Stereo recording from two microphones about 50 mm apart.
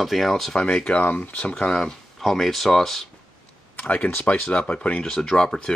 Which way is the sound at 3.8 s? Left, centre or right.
Left.